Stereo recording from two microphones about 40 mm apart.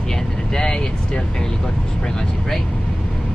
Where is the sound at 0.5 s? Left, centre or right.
Centre.